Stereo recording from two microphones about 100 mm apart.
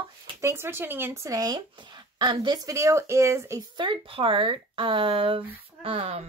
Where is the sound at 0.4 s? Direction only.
25° right (ahead or behind).